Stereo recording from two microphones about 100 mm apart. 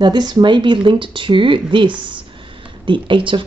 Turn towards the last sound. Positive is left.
turn(degrees=-60)  # may be behind; listen again after turning